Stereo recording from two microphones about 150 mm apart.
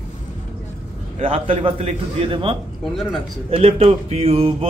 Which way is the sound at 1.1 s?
40° right (ahead or behind).